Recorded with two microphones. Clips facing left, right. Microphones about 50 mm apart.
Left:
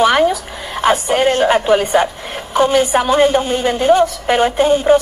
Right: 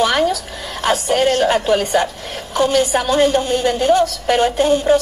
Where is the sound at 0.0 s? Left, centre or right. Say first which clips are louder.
Left 4 dB; centre.